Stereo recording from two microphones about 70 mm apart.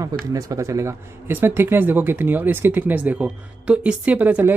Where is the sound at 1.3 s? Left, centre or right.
Right.